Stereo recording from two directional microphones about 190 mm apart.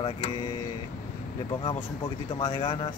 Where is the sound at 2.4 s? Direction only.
25° left (ahead or behind).